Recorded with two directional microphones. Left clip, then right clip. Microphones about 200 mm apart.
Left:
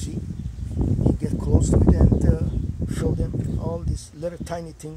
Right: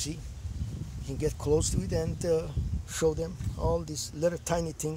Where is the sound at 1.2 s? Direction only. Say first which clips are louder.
Left 1 dB; 40° right (ahead or behind).